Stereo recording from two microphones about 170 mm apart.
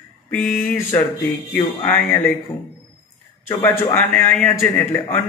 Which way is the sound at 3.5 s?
15° left (ahead or behind).